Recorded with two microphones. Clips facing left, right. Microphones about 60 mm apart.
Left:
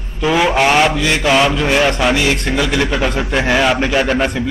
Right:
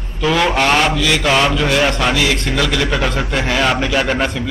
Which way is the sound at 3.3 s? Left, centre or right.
Left.